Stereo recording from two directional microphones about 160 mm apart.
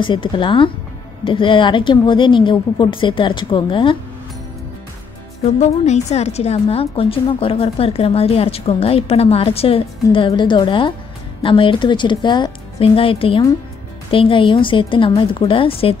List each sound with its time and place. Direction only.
0.0 s a woman's voice: 30° left (ahead or behind)
5.6 s a woman's voice: 45° left (ahead or behind)